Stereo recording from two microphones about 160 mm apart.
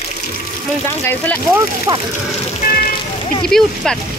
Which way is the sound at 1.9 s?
20° right (ahead or behind).